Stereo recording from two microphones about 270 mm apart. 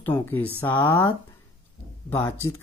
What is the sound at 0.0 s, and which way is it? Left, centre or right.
Speech, centre.